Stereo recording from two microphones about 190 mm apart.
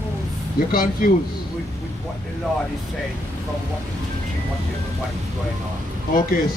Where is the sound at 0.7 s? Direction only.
50° left (ahead or behind).